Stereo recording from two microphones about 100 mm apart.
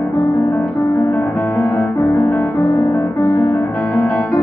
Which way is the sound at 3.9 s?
20° left (ahead or behind).